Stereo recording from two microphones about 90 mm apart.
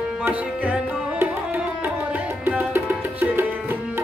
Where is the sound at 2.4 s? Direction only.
20° right (ahead or behind).